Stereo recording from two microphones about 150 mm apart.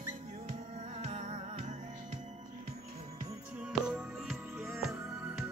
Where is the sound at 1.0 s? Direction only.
45° right (ahead or behind).